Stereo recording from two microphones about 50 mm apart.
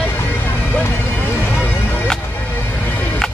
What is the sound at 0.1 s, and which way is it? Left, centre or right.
Music, left.